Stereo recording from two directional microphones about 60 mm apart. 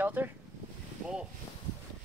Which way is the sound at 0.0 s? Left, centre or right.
Right.